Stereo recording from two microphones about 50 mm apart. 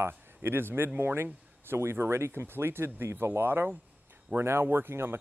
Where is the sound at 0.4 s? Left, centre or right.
Right.